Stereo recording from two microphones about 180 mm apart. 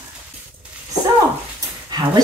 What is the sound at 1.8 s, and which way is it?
Speech, 25° right (ahead or behind).